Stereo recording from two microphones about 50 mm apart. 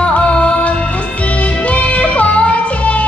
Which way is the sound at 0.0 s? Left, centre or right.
Left.